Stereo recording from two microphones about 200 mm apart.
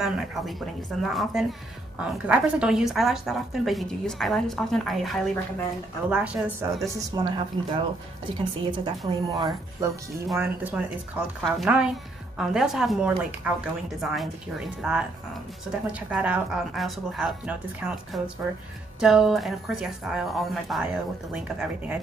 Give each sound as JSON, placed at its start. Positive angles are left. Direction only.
{"t": 0.0, "sound": "a woman's voice", "side_deg": 0}
{"t": 6.9, "sound": "a woman's voice", "side_deg": -15}
{"t": 10.3, "sound": "a woman's voice", "side_deg": -5}